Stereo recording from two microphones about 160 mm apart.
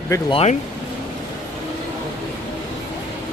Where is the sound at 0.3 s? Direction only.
40° left (ahead or behind).